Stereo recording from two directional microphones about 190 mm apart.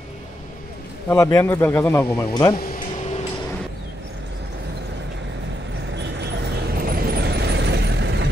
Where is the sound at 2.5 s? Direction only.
50° left (ahead or behind).